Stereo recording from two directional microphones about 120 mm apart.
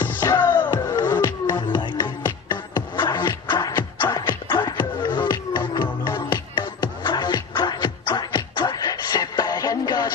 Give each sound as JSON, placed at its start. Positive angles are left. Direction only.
{"t": 0.0, "sound": "music", "side_deg": 15}
{"t": 1.6, "sound": "music", "side_deg": 40}